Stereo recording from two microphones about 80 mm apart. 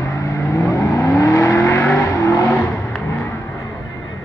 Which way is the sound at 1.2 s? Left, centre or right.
Left.